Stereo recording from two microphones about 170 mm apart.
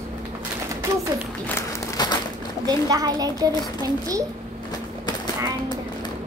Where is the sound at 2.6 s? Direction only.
20° right (ahead or behind).